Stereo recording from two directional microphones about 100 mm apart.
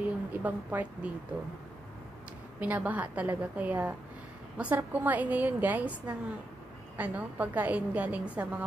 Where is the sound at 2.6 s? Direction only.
15° right (ahead or behind).